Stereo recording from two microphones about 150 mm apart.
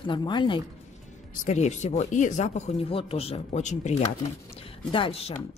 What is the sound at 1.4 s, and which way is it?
Speech, 50° left (ahead or behind).